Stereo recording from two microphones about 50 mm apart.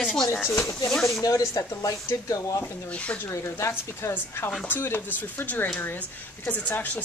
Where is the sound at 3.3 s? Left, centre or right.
Left.